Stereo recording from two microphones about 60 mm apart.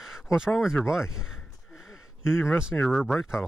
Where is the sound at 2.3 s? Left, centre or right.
Left.